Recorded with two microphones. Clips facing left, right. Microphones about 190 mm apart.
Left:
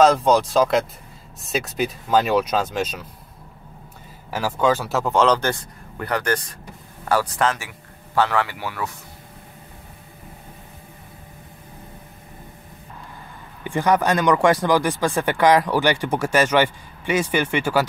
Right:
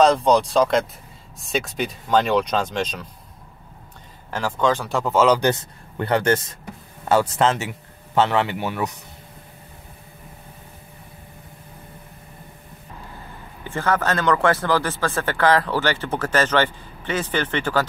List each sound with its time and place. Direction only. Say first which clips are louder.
0.0 s speech: even; centre (ahead or behind)
4.3 s speech: left 1 dB; 10° left (ahead or behind); by 5.5 s 10° right (ahead or behind)
5.5 s a man's voice: right 3 dB; 25° right (ahead or behind)
13.7 s speech: left 3 dB; 15° left (ahead or behind)